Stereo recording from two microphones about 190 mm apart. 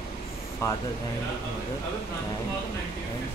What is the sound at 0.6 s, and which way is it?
Speech, 15° left (ahead or behind).